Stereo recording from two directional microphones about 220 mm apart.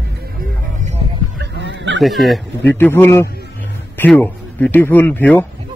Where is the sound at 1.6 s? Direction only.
55° right (ahead or behind).